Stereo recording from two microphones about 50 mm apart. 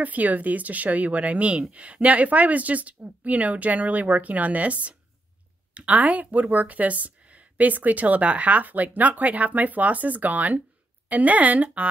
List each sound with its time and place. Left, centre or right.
0.0 s speech: right